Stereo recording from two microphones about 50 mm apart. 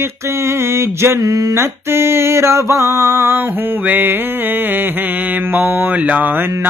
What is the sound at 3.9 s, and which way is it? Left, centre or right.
Mantra, right.